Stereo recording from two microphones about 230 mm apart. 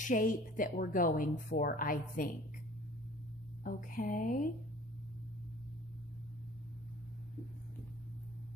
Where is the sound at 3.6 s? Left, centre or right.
Left.